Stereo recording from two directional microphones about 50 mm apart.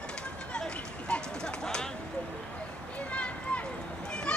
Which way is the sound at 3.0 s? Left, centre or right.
Left.